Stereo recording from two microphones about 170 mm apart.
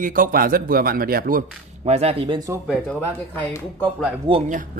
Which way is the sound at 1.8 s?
40° right (ahead or behind).